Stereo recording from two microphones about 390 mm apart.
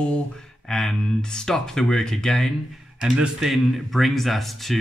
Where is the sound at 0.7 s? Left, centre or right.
Centre.